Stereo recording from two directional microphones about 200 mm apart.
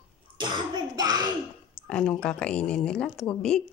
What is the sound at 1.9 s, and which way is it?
Speech, 5° left (ahead or behind).